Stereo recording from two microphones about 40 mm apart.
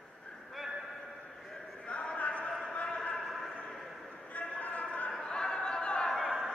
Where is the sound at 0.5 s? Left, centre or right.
Centre.